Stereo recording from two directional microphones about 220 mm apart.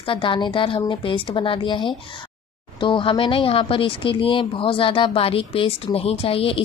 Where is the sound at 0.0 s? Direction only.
20° left (ahead or behind).